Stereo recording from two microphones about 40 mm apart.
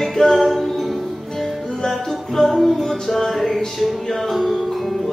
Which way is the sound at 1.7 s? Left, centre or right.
Centre.